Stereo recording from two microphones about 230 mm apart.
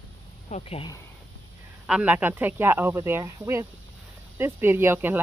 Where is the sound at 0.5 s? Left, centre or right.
Left.